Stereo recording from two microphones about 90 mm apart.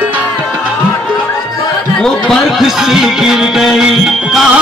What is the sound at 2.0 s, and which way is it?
Music, 5° left (ahead or behind).